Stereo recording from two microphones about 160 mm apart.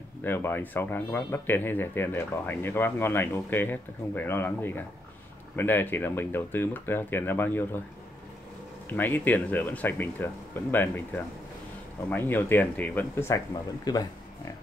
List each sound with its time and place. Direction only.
0.2 s speech: 15° left (ahead or behind)
8.8 s speech: 10° left (ahead or behind)